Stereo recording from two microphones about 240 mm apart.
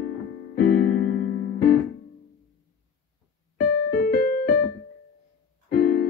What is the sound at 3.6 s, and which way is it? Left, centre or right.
Music, left.